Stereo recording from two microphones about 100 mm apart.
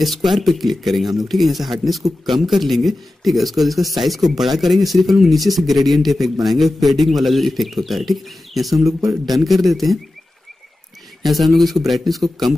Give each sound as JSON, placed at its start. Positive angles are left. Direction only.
{"t": 0.0, "sound": "speech", "side_deg": 0}
{"t": 8.8, "sound": "a man's voice", "side_deg": -35}
{"t": 9.2, "sound": "speech", "side_deg": 0}
{"t": 11.2, "sound": "speech", "side_deg": 0}